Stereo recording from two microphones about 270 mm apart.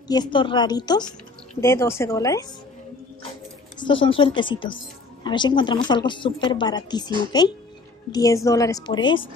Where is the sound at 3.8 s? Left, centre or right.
Centre.